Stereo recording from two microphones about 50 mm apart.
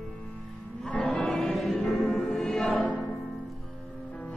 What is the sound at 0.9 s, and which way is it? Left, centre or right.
Music, left.